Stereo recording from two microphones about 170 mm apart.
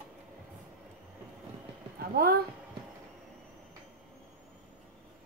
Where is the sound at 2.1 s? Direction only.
65° right (ahead or behind).